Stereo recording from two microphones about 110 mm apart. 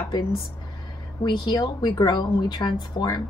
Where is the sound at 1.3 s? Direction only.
45° left (ahead or behind).